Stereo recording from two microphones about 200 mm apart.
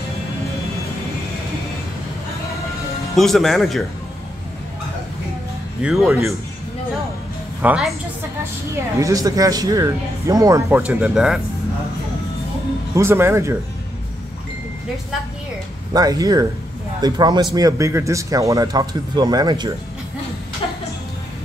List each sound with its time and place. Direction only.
3.2 s speech: centre (ahead or behind)
5.8 s speech: 5° right (ahead or behind)
7.6 s speech: 5° right (ahead or behind)
9.0 s speech: 15° right (ahead or behind)
12.9 s speech: 15° right (ahead or behind)
15.9 s a man's voice: 20° right (ahead or behind)